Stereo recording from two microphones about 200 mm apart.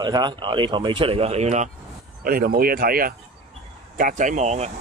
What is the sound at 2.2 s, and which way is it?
Speech, 45° right (ahead or behind).